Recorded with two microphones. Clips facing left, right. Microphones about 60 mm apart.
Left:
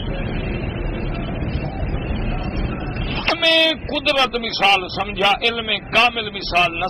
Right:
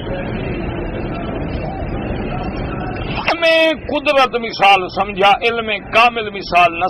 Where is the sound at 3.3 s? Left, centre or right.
Right.